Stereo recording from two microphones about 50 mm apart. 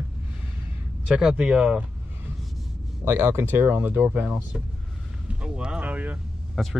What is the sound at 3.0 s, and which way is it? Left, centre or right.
Speech, right.